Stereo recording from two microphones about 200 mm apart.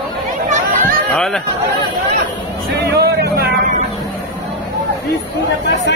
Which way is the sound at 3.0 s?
55° right (ahead or behind).